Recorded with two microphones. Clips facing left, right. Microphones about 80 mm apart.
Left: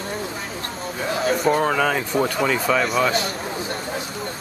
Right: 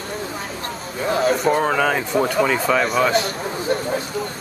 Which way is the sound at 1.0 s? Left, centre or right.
Right.